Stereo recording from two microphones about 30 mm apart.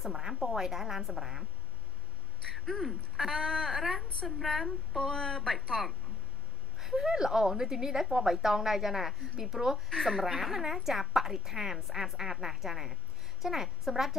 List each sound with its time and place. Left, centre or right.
0.0 s a sound: centre
0.6 s a woman's voice: centre
2.5 s speech: centre
5.1 s speech: centre
5.5 s speech: centre
6.8 s a woman's voice: centre
9.8 s a woman's voice: centre